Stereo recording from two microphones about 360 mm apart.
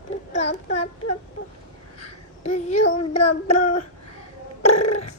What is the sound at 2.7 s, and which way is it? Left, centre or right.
Child singing, left.